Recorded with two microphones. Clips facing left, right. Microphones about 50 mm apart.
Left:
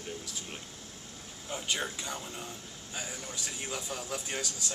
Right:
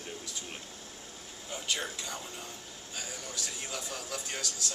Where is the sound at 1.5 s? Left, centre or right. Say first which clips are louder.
Left 1 dB; centre.